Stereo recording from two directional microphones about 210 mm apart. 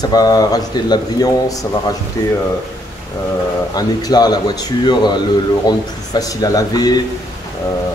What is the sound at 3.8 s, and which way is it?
A man's voice, 20° left (ahead or behind).